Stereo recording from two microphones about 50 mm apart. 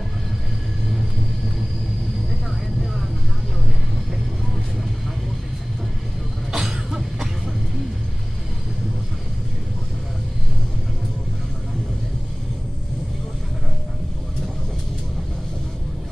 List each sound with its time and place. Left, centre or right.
6.5 s cough: centre